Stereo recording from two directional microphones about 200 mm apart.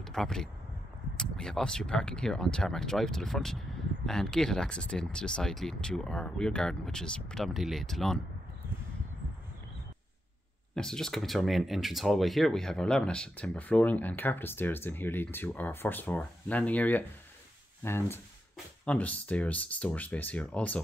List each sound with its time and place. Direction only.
0.0 s speech: centre (ahead or behind)
10.7 s speech: 5° left (ahead or behind)